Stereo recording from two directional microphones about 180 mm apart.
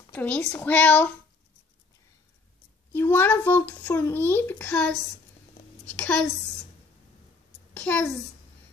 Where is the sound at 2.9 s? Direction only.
10° left (ahead or behind).